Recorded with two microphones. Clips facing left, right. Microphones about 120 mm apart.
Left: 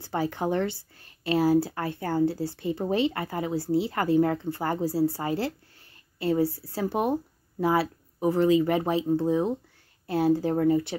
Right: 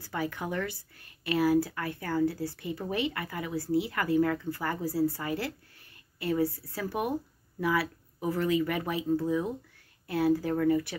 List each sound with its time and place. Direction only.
0.0 s speech: 30° left (ahead or behind)